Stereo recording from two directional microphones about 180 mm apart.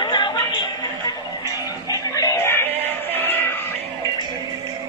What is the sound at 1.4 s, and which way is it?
Music, 20° left (ahead or behind).